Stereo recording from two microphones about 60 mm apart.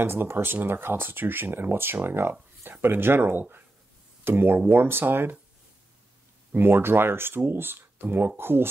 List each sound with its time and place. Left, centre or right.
0.0 s speech: right
6.5 s speech: right